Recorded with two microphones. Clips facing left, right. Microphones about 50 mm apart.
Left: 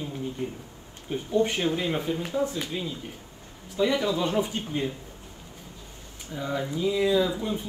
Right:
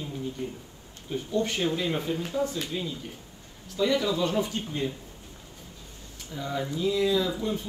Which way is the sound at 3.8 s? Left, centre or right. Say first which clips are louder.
Left 1 dB; left.